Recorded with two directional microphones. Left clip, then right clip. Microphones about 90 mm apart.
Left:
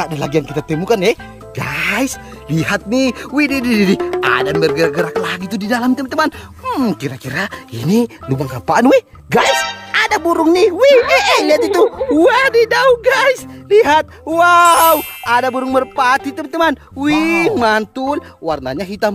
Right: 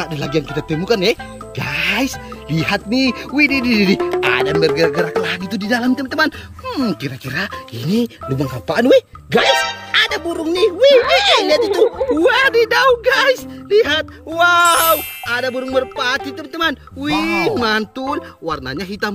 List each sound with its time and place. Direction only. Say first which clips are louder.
0.0 s speech: left 3 dB; 40° left (ahead or behind)
7.8 s speech: left 4 dB; 50° left (ahead or behind)
8.3 s speech: left 4 dB; 75° left (ahead or behind); by 9.5 s 50° left (ahead or behind)
9.5 s music: even; centre (ahead or behind)
9.8 s speech: left 5 dB; 45° left (ahead or behind)
12.2 s speech: left 3 dB; 25° left (ahead or behind)